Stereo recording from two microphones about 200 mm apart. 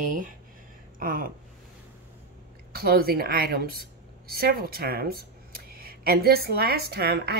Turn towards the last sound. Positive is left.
turn(degrees=-55)  # may be behind; listen again after turning